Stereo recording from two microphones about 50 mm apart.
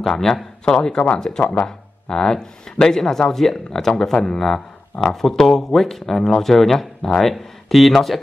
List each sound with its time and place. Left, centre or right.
0.0 s speech: centre